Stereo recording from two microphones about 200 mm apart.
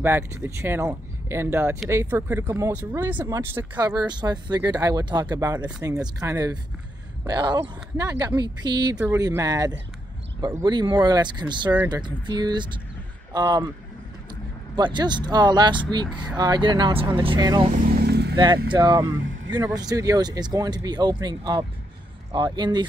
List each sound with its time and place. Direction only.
0.0 s speech: 10° right (ahead or behind)
14.8 s speech: 20° right (ahead or behind)
17.6 s vehicle: 45° right (ahead or behind)
18.3 s speech: 20° right (ahead or behind)